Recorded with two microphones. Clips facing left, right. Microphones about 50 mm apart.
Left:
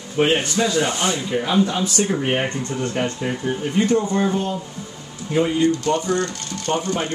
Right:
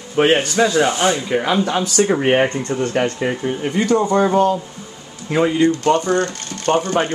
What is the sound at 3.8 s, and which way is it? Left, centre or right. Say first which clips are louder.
Speech: right 6 dB; right.